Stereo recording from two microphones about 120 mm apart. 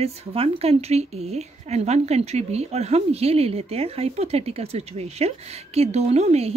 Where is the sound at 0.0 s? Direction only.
55° right (ahead or behind).